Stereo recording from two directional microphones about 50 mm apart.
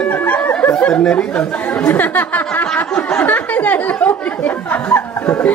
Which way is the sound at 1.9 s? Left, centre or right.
Left.